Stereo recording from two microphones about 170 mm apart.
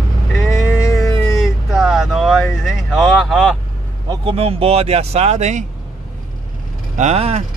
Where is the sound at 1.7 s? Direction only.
Centre (ahead or behind).